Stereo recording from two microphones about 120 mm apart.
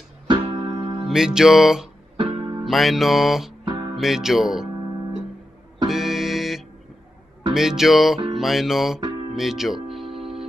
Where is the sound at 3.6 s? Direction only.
40° right (ahead or behind).